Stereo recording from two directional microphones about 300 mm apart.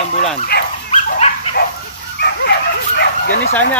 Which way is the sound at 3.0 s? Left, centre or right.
Left.